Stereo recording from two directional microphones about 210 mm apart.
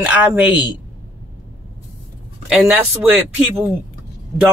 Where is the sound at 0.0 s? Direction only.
10° right (ahead or behind).